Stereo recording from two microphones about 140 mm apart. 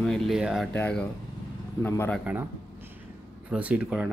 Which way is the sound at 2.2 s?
15° right (ahead or behind).